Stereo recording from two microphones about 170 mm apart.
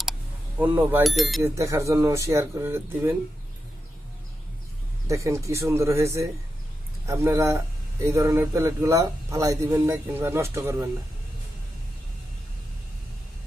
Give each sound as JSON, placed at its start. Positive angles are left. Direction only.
{"t": 0.6, "sound": "speech", "side_deg": -10}
{"t": 1.4, "sound": "a man's voice", "side_deg": -20}
{"t": 5.0, "sound": "a man's voice", "side_deg": -20}